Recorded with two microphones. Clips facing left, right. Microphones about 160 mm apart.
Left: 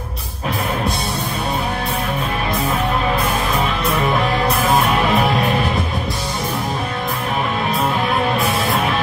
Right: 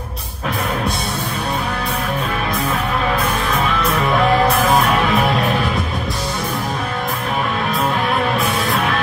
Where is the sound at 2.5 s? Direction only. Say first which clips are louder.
Left 2 dB; centre (ahead or behind).